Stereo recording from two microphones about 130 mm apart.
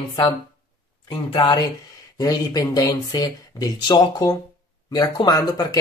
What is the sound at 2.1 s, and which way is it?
Speech, 30° left (ahead or behind).